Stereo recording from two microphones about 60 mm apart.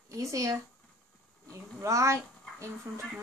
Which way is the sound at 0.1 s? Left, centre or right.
Right.